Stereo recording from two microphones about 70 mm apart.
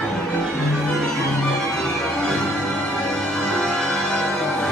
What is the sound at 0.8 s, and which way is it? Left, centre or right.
Music, centre.